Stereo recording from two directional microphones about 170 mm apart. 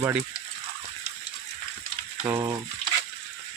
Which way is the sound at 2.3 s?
20° right (ahead or behind).